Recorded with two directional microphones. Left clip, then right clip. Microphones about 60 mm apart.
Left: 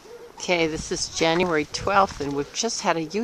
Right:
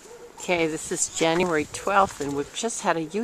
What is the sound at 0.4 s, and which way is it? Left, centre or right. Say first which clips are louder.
Speech: left 1 dB; centre.